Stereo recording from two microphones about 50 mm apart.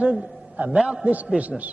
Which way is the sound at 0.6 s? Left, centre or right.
Right.